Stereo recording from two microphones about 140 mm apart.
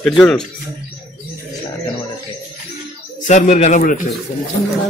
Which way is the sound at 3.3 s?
60° left (ahead or behind).